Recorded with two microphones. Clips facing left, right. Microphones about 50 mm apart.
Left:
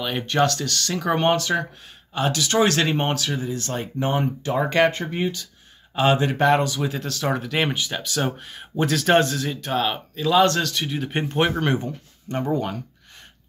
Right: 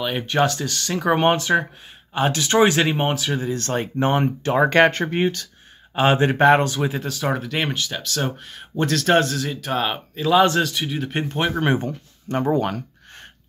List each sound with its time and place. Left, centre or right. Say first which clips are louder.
0.0 s speech: right 1 dB; centre; by 2.6 s right
2.6 s speech: right 2 dB; centre
3.4 s speech: right 4 dB; right
5.9 s speech: right 2 dB; right
7.0 s speech: right 1 dB; centre
7.7 s speech: even; centre
12.3 s speech: right 4 dB; right
12.6 s a sound: right 4 dB; right